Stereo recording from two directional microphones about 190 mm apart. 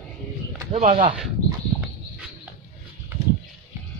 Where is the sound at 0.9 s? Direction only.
25° right (ahead or behind).